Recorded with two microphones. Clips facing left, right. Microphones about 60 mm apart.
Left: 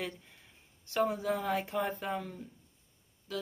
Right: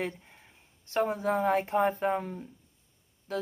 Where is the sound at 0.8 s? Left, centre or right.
Right.